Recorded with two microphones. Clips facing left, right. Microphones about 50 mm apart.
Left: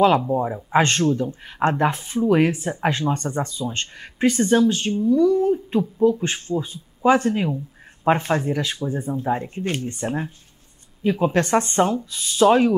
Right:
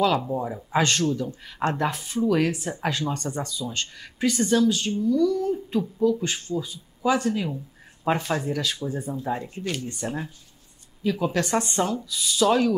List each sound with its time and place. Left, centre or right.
0.3 s speech: left
7.4 s a sound: left
8.1 s speech: left